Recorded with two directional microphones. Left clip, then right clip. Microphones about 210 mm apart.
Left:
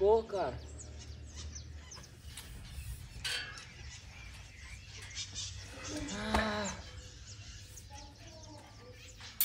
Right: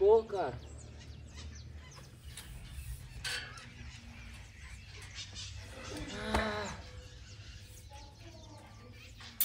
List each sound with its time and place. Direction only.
0.0 s speech: 5° left (ahead or behind)
3.2 s a sound: centre (ahead or behind)
5.1 s cat: 40° right (ahead or behind)
5.8 s livestock: centre (ahead or behind)